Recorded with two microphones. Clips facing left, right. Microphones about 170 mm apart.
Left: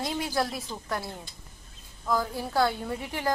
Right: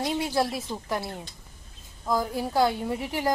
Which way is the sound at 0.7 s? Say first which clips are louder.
Right 3 dB; 10° right (ahead or behind).